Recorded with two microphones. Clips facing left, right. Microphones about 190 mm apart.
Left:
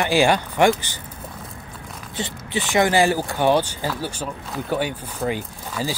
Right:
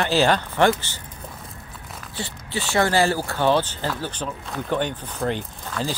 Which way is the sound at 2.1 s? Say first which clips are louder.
Left 4 dB; 20° left (ahead or behind).